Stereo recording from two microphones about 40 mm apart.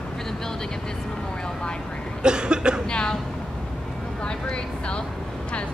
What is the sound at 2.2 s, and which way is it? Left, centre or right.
Cough, right.